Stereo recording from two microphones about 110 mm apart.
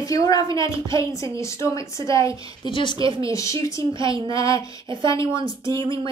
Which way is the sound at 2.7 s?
50° left (ahead or behind).